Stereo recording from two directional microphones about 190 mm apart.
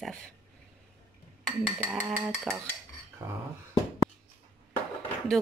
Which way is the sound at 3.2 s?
15° right (ahead or behind).